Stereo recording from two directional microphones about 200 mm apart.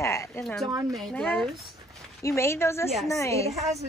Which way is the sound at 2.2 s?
15° left (ahead or behind).